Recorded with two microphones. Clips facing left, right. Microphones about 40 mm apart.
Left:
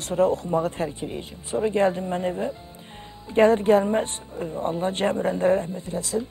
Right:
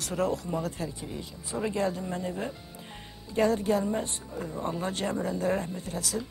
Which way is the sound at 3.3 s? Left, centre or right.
Left.